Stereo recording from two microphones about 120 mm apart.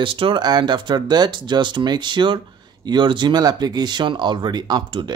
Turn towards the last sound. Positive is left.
turn(degrees=-35)  # may be behind; listen again after turning